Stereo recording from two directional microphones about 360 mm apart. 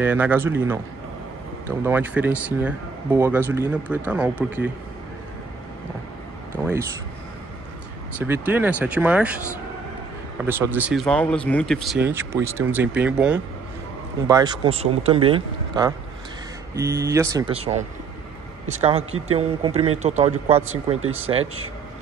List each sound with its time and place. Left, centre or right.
0.0 s speech: centre
1.8 s speech: centre
6.5 s speech: centre
8.2 s speech: centre
10.4 s speech: centre